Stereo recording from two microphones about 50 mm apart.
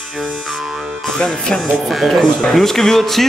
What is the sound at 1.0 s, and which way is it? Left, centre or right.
Speech, centre.